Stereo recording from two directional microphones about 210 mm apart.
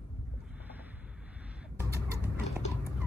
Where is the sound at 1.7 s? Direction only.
15° right (ahead or behind).